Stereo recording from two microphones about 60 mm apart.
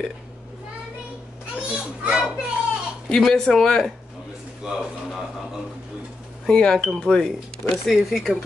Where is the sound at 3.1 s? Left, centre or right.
Centre.